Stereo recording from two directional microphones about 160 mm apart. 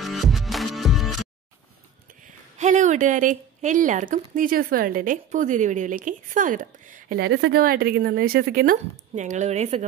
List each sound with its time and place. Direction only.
0.0 s music: centre (ahead or behind)
2.2 s a woman's voice: 50° right (ahead or behind)
7.2 s speech: 85° right; by 9.8 s 45° right (ahead or behind)